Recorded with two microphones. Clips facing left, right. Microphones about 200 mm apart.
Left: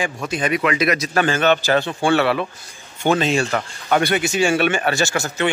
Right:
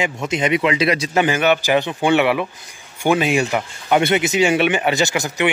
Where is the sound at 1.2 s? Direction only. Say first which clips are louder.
Even; 10° right (ahead or behind).